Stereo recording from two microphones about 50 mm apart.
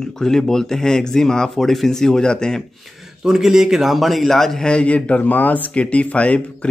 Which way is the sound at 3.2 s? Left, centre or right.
Centre.